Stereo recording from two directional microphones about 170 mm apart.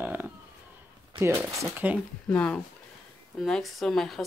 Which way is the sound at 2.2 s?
5° left (ahead or behind).